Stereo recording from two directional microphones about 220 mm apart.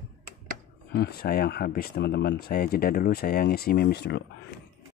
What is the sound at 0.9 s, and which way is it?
Speech, 45° left (ahead or behind).